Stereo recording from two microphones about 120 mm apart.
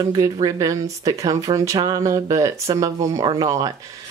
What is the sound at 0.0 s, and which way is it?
Speech, 35° right (ahead or behind).